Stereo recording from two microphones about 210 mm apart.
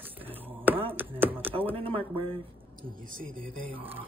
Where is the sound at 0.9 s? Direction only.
10° right (ahead or behind).